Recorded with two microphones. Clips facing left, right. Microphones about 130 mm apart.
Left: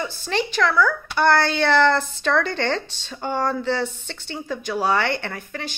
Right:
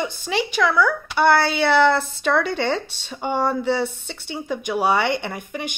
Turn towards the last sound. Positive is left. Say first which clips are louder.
# right 3 dB
turn(degrees=-15)  # may be behind; listen again after turning